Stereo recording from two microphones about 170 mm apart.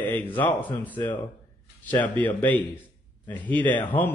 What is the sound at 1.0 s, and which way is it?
Speech, 25° left (ahead or behind).